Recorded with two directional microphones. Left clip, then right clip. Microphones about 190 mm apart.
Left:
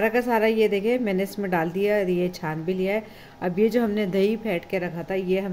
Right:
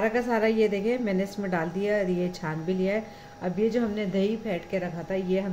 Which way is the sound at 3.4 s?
65° left (ahead or behind).